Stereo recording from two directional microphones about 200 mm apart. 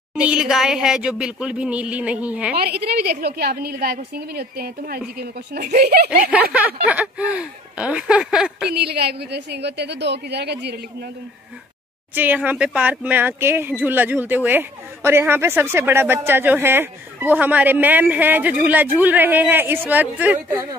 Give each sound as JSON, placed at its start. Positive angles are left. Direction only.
{"t": 0.1, "sound": "speech", "side_deg": -5}
{"t": 2.5, "sound": "a woman's voice", "side_deg": -55}
{"t": 6.0, "sound": "speech", "side_deg": -5}
{"t": 8.7, "sound": "a woman's voice", "side_deg": -55}
{"t": 12.2, "sound": "speech", "side_deg": -10}